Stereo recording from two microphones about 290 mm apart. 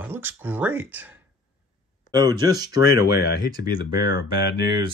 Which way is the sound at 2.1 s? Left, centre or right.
Centre.